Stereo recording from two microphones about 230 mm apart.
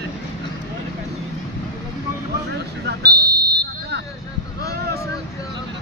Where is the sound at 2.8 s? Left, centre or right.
Right.